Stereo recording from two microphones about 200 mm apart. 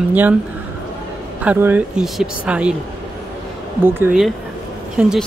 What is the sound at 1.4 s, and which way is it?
Speech, 10° right (ahead or behind).